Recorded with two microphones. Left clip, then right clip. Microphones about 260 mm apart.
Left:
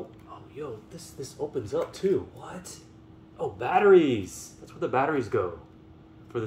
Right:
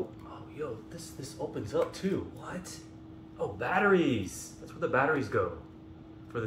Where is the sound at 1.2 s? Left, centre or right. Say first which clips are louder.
Left 5 dB; left.